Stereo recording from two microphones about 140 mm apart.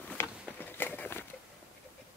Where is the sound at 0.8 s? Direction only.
15° left (ahead or behind).